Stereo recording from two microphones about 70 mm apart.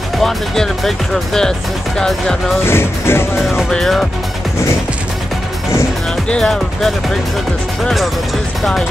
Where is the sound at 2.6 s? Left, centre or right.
Left.